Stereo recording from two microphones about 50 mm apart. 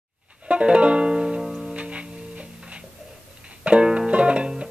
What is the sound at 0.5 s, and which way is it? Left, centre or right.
Music, right.